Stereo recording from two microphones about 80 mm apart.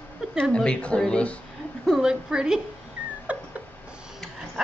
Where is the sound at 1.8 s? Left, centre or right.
Centre.